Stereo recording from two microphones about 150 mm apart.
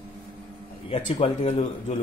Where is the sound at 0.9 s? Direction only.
45° left (ahead or behind).